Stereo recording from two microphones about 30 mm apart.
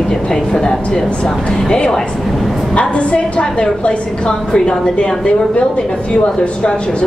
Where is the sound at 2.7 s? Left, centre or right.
Left.